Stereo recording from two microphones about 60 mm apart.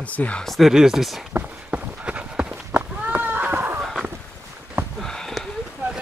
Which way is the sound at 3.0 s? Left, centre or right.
Right.